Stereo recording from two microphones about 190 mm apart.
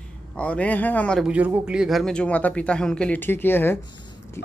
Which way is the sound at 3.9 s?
25° left (ahead or behind).